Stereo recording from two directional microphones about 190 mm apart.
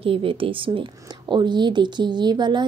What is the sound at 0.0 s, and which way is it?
A woman's voice, 30° right (ahead or behind).